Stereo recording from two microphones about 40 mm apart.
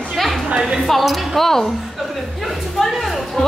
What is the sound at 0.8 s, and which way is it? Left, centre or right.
Speech, centre.